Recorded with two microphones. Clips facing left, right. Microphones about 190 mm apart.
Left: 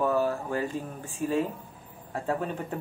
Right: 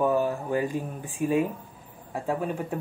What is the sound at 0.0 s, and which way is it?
Speech, 15° right (ahead or behind).